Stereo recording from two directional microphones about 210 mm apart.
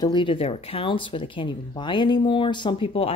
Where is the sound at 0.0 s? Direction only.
20° left (ahead or behind).